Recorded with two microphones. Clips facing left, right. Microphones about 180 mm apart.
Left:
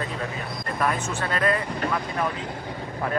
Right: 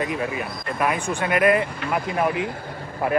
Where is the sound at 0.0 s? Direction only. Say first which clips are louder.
Right 5 dB; 15° right (ahead or behind).